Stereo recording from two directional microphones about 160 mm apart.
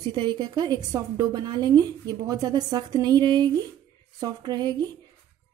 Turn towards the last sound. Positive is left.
turn(degrees=-25)  # may be behind; listen again after turning